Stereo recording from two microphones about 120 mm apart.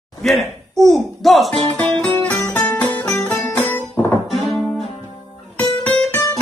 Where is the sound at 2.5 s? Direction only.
15° left (ahead or behind).